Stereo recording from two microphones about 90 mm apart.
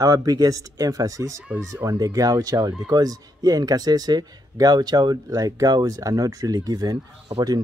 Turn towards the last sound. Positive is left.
turn(degrees=-50)  # may be behind; listen again after turning